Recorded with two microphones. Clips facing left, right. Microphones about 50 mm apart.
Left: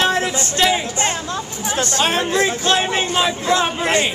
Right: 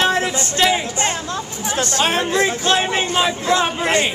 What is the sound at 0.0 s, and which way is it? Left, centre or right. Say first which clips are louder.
Music: even; right.